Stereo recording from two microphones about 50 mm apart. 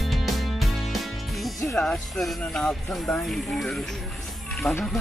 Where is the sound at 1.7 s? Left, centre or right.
Centre.